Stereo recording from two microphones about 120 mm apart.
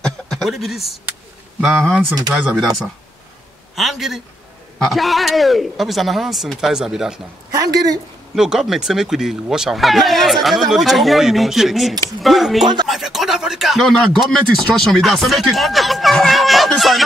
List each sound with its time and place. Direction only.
0.0 s a sound: 5° left (ahead or behind)
1.8 s speech: 15° right (ahead or behind)
3.7 s speech: centre (ahead or behind)
7.5 s speech: 30° right (ahead or behind)
8.4 s speech: 5° right (ahead or behind)